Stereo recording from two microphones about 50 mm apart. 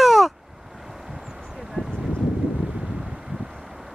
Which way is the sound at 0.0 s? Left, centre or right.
Centre.